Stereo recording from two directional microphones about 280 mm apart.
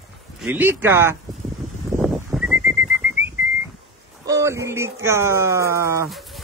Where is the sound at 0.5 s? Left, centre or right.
Centre.